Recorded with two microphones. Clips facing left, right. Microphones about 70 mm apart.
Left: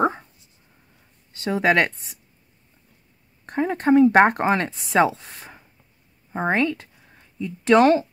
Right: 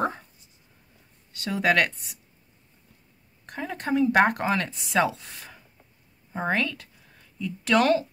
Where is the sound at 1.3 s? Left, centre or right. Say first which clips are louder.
Left 4 dB; left.